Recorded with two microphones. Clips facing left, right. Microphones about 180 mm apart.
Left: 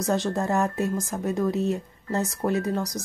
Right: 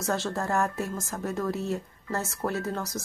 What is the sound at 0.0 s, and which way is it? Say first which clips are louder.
Speech: left 4 dB; 15° left (ahead or behind).